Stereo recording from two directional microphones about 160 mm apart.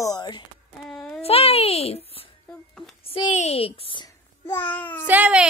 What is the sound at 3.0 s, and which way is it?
A child's voice, 35° left (ahead or behind).